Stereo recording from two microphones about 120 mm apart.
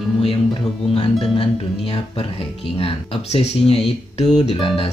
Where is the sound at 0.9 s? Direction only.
45° left (ahead or behind).